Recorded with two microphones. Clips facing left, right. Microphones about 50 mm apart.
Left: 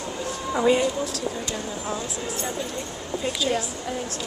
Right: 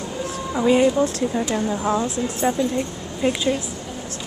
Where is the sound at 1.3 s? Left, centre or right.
Right.